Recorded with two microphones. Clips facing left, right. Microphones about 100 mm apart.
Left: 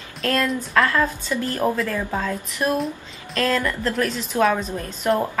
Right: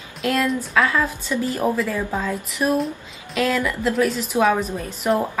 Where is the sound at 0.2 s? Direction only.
10° right (ahead or behind).